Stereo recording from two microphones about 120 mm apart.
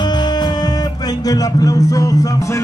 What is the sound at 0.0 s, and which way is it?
Music, 35° left (ahead or behind).